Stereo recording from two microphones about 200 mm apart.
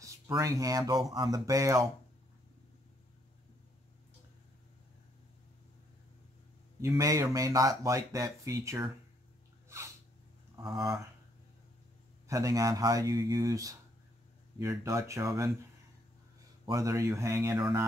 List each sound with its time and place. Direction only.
0.0 s speech: 15° right (ahead or behind)
6.8 s speech: 15° right (ahead or behind)
10.5 s a sound: 20° right (ahead or behind)
12.3 s speech: 15° right (ahead or behind)
16.6 s speech: 15° right (ahead or behind)